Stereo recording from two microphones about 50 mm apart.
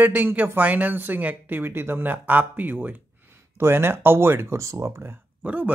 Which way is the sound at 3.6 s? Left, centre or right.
Right.